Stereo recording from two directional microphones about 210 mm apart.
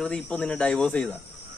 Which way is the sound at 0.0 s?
5° left (ahead or behind).